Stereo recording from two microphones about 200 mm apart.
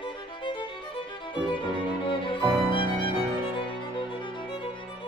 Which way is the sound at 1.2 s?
25° left (ahead or behind).